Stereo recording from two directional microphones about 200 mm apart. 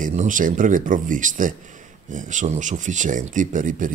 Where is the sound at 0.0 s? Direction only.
40° right (ahead or behind).